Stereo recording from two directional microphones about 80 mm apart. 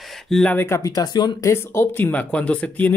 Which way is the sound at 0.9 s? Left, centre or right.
Left.